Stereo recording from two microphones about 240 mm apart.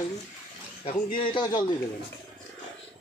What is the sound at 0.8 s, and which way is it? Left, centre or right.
Speech, left.